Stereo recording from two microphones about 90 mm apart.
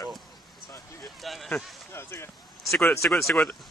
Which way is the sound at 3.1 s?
5° left (ahead or behind).